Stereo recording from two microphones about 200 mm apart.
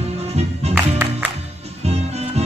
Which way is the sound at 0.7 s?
10° right (ahead or behind).